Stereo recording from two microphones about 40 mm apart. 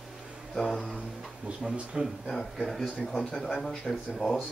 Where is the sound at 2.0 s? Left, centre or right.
Right.